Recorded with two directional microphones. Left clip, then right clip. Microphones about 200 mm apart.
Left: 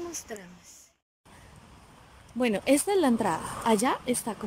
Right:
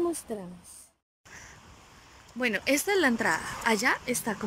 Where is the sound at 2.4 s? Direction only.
15° left (ahead or behind).